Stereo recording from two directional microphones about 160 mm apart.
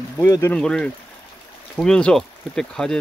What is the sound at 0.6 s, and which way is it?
Speech, 5° left (ahead or behind).